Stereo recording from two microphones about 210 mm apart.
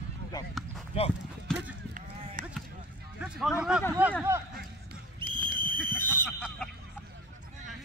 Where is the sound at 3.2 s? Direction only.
5° right (ahead or behind).